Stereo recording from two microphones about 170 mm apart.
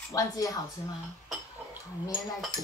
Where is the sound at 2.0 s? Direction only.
25° left (ahead or behind).